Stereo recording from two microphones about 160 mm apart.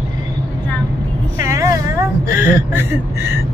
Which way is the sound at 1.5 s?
20° right (ahead or behind).